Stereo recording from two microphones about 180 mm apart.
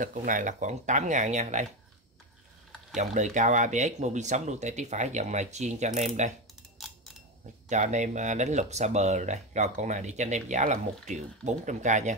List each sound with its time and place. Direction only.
0.0 s speech: 45° right (ahead or behind)
3.0 s speech: 40° right (ahead or behind)
7.7 s speech: 40° right (ahead or behind)